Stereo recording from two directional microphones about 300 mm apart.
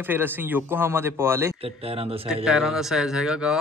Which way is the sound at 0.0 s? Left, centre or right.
Centre.